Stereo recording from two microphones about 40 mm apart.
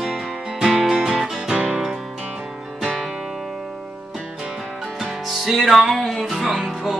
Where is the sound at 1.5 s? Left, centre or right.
Right.